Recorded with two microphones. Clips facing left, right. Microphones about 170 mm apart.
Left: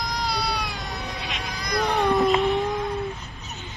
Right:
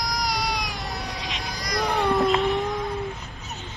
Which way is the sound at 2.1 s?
Centre (ahead or behind).